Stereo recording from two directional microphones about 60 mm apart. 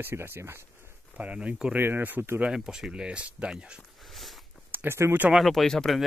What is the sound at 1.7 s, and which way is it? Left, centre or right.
Speech, right.